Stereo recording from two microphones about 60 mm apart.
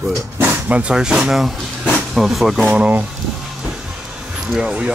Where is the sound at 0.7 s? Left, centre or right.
Right; by 2.6 s centre.